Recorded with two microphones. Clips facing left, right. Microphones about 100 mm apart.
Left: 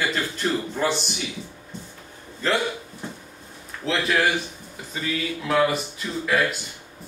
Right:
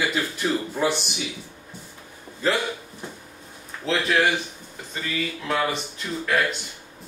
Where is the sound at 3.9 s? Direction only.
Centre (ahead or behind).